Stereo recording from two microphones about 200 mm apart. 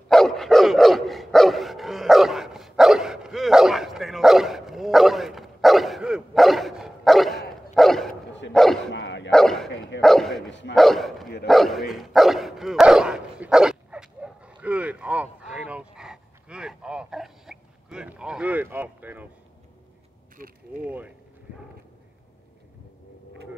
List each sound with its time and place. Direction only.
0.1 s dog: centre (ahead or behind)
8.9 s dog: 65° left (ahead or behind)
9.3 s dog: centre (ahead or behind)
10.7 s bow-wow: centre (ahead or behind)
11.4 s dog: centre (ahead or behind)
20.8 s a sound: 10° right (ahead or behind)